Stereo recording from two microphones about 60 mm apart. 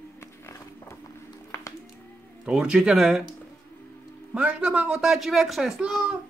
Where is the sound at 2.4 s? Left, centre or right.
Centre.